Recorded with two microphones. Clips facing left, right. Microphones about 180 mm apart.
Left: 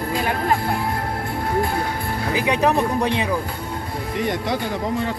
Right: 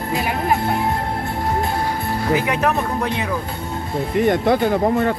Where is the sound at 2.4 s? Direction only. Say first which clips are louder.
Left 1 dB; 15° left (ahead or behind).